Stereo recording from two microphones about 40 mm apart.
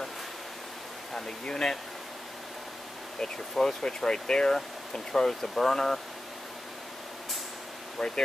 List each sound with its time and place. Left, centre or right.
1.4 s speech: centre
3.2 s speech: centre
8.0 s speech: centre